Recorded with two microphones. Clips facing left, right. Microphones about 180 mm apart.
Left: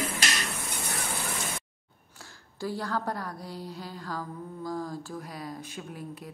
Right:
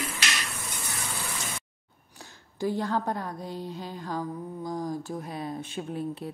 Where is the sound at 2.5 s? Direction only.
20° right (ahead or behind).